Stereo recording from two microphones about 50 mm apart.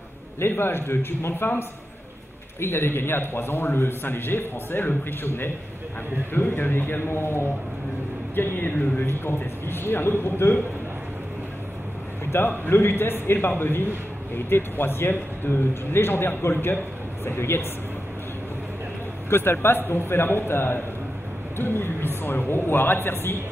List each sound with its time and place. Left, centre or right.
0.4 s a man's voice: left
12.3 s a man's voice: left
19.2 s a man's voice: left